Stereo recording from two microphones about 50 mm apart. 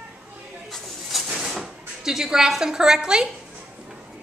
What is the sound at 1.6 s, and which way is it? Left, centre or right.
Speech, centre.